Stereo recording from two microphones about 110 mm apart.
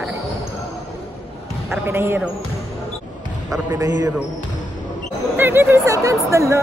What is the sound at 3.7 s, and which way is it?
Speech, 30° right (ahead or behind).